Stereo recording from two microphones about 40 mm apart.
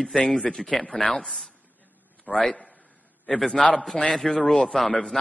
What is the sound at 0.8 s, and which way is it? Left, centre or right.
Speech, left.